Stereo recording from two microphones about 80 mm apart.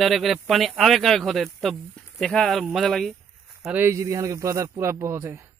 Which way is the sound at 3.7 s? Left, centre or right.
Right.